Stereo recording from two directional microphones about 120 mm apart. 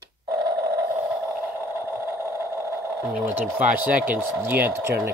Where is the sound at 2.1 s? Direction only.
20° right (ahead or behind).